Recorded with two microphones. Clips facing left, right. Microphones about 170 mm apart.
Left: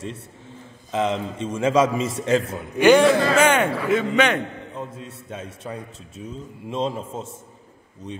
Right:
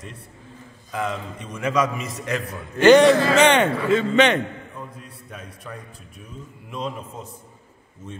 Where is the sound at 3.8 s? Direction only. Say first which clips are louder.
Right 1 dB; 15° left (ahead or behind).